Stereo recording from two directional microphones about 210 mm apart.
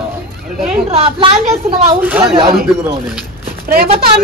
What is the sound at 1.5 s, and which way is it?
Speech, 10° right (ahead or behind).